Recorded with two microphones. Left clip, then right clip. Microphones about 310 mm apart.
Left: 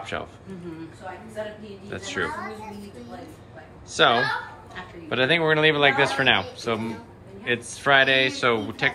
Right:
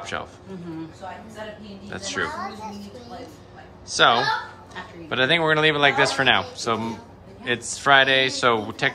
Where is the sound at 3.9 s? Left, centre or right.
Centre.